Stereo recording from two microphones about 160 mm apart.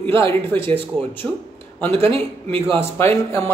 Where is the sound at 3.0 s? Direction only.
15° left (ahead or behind).